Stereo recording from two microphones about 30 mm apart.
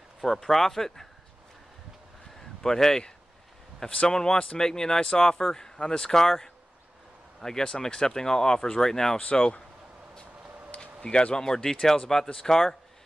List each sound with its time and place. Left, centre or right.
0.2 s speech: centre
2.6 s speech: centre
4.1 s speech: left
9.2 s speech: left
10.8 s a sound: left
11.3 s speech: left